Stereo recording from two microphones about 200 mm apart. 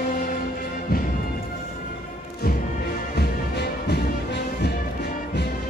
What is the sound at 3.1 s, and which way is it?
Music, 55° left (ahead or behind).